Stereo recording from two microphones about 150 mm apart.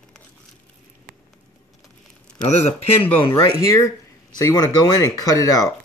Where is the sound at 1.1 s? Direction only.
80° right.